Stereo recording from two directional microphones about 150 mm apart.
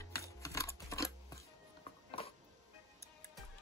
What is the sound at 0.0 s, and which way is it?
Music, 20° left (ahead or behind).